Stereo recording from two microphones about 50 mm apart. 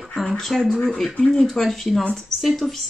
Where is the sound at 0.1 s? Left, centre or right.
Centre.